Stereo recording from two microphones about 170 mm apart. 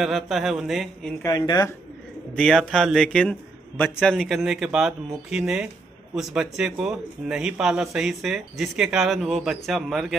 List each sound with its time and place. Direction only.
0.0 s speech: centre (ahead or behind)
1.2 s speech: 25° left (ahead or behind)
2.3 s speech: 5° left (ahead or behind)